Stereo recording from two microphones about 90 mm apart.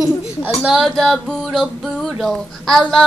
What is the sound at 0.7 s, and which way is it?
Child singing, centre (ahead or behind).